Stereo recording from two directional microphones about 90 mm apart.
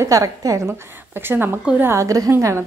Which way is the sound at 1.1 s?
25° right (ahead or behind).